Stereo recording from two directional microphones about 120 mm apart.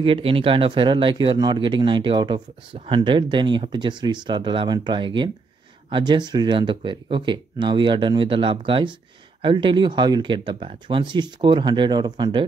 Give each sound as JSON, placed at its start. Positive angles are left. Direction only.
{"t": 0.0, "sound": "speech", "side_deg": -50}